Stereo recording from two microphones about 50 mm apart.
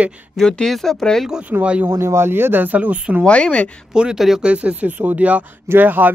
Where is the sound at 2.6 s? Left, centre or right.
Right.